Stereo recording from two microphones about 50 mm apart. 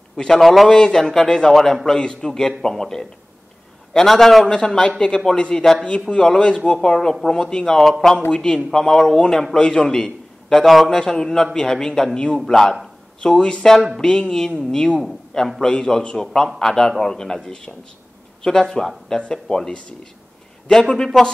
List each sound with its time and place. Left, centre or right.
0.1 s a man's voice: centre
0.7 s a man's voice: centre
13.2 s a man's voice: centre
20.9 s a man's voice: centre